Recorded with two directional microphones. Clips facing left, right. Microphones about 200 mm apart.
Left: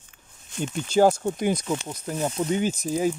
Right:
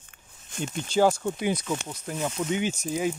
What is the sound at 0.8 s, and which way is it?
Speech, 45° left (ahead or behind).